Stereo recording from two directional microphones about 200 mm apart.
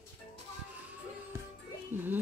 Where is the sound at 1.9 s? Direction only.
10° right (ahead or behind).